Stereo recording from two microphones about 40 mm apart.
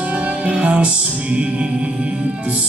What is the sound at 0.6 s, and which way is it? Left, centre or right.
Music, right.